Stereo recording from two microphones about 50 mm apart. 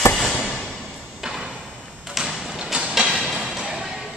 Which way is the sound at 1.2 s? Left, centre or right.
Centre.